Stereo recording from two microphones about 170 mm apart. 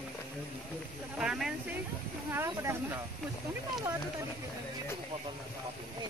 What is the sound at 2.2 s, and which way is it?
Speech, 15° right (ahead or behind).